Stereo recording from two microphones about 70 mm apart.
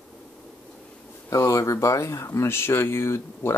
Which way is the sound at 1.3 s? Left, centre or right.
Left.